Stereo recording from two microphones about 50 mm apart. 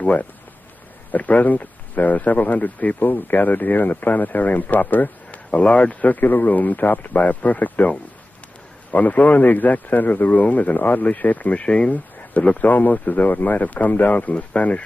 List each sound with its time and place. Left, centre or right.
0.0 s speech: left